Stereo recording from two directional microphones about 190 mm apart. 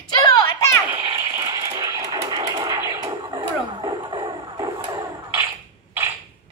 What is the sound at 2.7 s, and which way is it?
Music, 20° right (ahead or behind).